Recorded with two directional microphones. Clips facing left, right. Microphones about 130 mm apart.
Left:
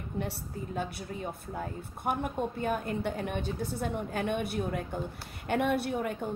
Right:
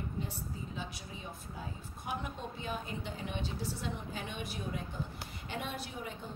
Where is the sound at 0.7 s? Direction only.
55° left (ahead or behind).